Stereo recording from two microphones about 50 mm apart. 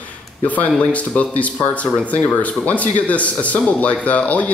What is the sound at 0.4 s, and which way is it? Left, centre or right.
A man's voice, left.